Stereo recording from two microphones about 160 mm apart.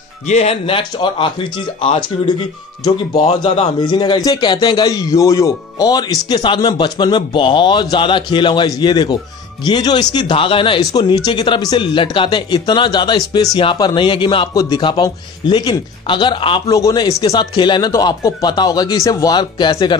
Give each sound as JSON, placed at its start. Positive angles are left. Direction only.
{"t": 0.3, "sound": "a man's voice", "side_deg": 40}
{"t": 3.4, "sound": "a man's voice", "side_deg": 45}
{"t": 3.8, "sound": "a man's voice", "side_deg": 30}